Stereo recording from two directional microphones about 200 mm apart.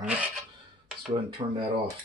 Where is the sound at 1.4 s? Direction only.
30° right (ahead or behind).